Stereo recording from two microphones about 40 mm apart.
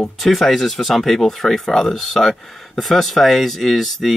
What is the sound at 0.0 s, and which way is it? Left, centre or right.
Speech, centre.